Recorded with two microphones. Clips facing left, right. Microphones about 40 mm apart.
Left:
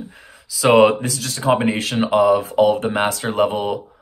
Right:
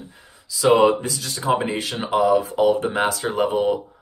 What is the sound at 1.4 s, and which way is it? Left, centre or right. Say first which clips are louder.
Speech: left 4 dB; left.